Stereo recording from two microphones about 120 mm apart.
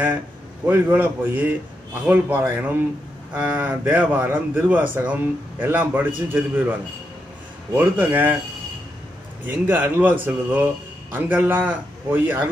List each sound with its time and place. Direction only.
0.7 s speech: 15° right (ahead or behind)
9.5 s speech: 15° right (ahead or behind)